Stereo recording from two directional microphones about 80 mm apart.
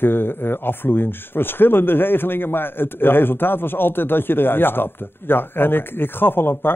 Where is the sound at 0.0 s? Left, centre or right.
Left.